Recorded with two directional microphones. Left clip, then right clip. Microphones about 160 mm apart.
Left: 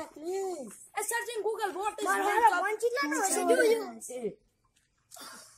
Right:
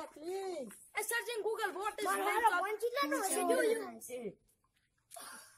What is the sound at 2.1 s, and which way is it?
Speech, 60° right (ahead or behind).